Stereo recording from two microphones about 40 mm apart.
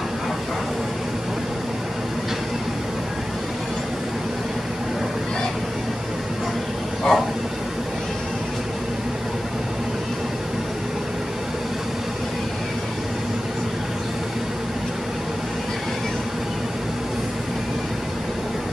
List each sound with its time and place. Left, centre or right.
7.1 s vehicle: centre